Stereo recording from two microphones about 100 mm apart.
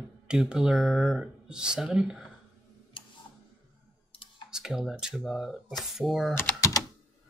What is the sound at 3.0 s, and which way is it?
Tick-tock, 55° left (ahead or behind).